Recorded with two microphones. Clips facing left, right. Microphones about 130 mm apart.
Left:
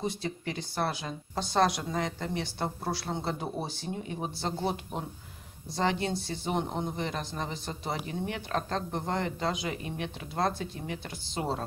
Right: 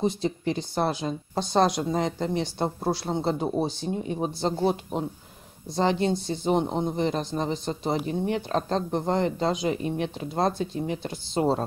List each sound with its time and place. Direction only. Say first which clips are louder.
0.0 s speech: right 8 dB; 25° right (ahead or behind)